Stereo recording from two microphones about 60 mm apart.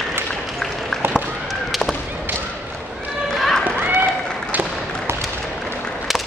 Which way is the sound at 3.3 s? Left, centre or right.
Centre.